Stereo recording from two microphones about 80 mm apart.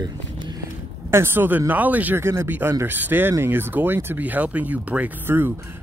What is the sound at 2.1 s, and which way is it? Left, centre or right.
Speech, right.